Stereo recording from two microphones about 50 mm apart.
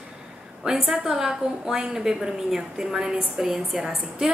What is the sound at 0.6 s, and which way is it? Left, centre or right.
A woman's voice, centre.